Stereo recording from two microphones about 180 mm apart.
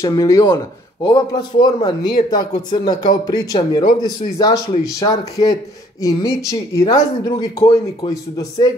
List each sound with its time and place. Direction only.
0.0 s speech: 20° left (ahead or behind)